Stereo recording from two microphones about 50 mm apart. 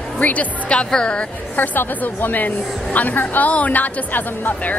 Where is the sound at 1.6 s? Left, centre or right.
Left.